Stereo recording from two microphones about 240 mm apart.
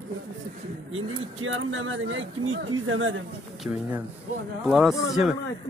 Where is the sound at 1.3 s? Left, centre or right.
Right.